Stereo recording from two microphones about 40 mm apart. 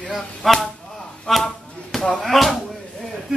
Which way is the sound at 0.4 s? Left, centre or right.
Centre.